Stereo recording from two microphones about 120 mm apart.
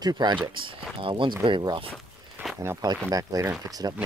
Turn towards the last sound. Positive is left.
turn(degrees=-35)  # may be behind; listen again after turning